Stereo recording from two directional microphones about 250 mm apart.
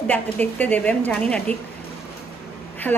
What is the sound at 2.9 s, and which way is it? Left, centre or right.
Speech, centre.